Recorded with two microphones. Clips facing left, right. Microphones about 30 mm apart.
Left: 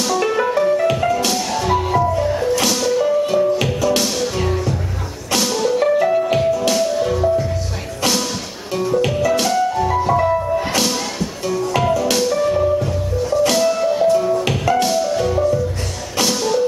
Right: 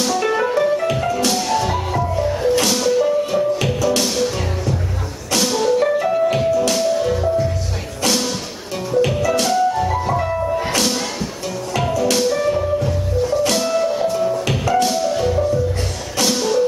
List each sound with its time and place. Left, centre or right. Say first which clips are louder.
0.0 s music: left 1 dB; centre
8.9 s music: right 1 dB; centre
14.6 s music: right 2 dB; centre
14.9 s music: left 1 dB; centre